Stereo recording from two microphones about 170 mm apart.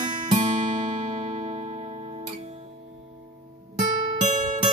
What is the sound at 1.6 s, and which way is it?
Music, 40° right (ahead or behind).